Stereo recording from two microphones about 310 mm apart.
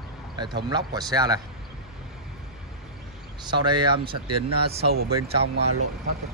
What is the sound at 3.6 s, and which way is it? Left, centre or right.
Speech, centre.